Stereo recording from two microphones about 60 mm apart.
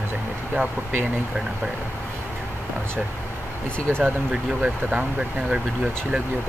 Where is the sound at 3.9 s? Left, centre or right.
Right.